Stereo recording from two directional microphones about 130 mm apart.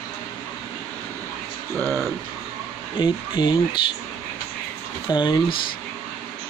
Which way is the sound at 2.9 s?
40° left (ahead or behind).